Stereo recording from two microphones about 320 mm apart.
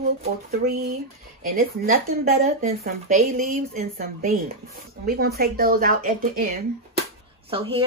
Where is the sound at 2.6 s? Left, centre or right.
Right.